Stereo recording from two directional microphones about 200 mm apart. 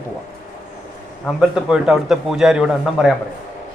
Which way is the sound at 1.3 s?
Centre (ahead or behind).